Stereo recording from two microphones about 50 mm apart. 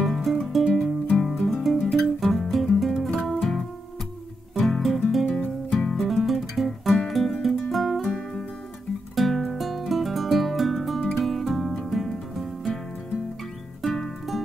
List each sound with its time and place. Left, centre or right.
0.0 s music: centre
1.5 s guitar: centre
3.3 s music: centre
6.0 s music: centre
9.1 s music: centre
13.8 s music: centre